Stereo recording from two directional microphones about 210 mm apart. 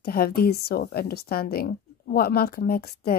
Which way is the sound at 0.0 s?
45° left (ahead or behind).